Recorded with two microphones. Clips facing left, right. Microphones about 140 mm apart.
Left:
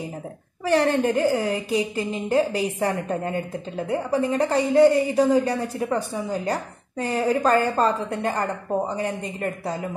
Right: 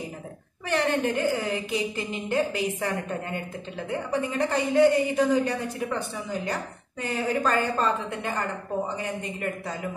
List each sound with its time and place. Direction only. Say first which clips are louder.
0.7 s a woman's voice: left 5 dB; 35° left (ahead or behind)